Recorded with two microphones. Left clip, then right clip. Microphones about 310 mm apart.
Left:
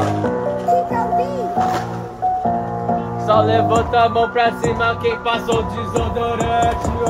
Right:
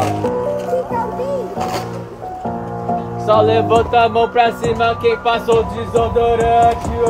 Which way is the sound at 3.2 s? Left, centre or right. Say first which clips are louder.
Right 2 dB; right.